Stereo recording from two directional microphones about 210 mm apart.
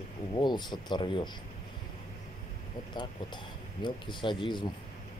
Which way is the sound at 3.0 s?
20° left (ahead or behind).